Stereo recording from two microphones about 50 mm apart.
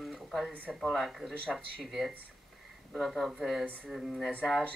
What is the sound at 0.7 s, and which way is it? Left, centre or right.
Speech, centre.